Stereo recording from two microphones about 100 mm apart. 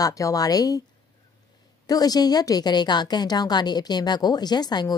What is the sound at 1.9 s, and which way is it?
A woman's voice, 40° left (ahead or behind).